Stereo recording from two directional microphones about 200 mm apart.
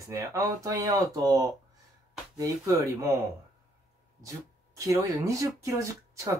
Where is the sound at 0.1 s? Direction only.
15° right (ahead or behind).